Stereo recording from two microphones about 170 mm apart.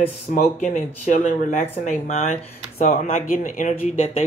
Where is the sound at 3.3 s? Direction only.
55° left (ahead or behind).